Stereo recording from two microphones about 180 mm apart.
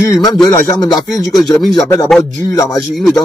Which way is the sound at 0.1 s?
20° left (ahead or behind).